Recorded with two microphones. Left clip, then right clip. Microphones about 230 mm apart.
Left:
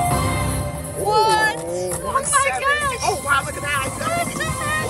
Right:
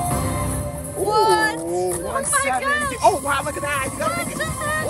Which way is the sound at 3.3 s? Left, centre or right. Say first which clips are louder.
Left 2 dB; right.